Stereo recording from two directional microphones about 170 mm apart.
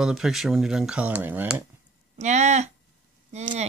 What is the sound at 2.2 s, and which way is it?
Speech, 40° right (ahead or behind).